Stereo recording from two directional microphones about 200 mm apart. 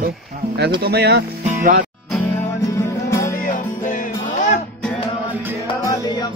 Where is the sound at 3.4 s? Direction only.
40° left (ahead or behind).